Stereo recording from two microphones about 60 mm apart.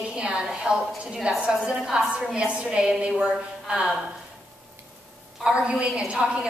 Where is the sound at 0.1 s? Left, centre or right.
Centre.